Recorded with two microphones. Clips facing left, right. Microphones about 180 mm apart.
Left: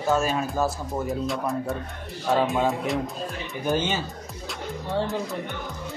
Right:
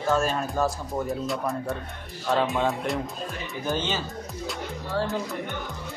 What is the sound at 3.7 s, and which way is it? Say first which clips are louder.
Speech: left 3 dB; 15° left (ahead or behind).